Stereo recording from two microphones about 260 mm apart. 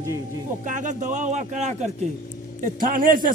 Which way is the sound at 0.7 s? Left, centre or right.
Right.